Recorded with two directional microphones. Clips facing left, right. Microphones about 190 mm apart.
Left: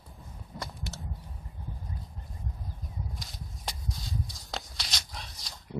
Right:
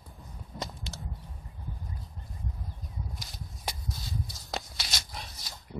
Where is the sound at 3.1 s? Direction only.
Centre (ahead or behind).